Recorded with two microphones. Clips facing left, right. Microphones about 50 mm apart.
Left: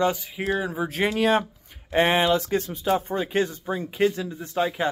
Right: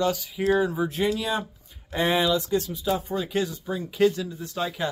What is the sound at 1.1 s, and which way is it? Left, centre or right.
Speech, left.